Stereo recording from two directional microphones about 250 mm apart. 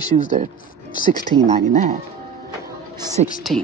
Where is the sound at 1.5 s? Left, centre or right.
Right.